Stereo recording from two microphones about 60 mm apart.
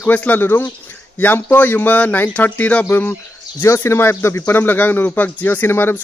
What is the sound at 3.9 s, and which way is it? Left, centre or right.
Speech, left.